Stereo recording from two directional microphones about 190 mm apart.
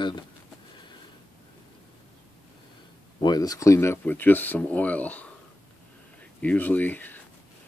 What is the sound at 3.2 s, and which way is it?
Speech, 20° left (ahead or behind).